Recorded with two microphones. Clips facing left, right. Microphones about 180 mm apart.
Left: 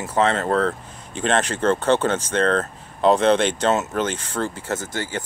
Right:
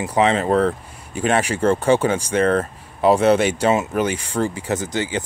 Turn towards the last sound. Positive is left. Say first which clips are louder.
# right 4 dB
turn(degrees=-20)  # may be behind; listen again after turning